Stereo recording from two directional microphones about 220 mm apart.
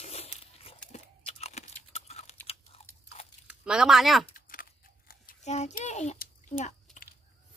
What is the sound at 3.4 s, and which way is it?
Speech, 5° right (ahead or behind).